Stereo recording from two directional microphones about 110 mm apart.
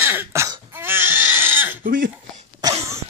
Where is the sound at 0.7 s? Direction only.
20° right (ahead or behind).